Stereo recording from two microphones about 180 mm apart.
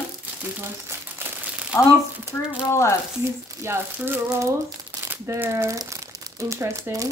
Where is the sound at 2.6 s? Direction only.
15° left (ahead or behind).